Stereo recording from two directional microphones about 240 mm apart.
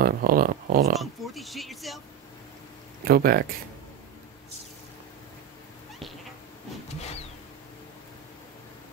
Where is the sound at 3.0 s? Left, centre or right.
Right.